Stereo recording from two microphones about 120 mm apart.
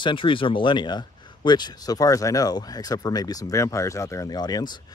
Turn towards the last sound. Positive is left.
turn(degrees=35)  # may be behind; listen again after turning